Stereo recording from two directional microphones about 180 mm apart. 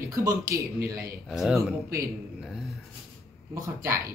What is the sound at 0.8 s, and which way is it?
Speech, 55° right (ahead or behind).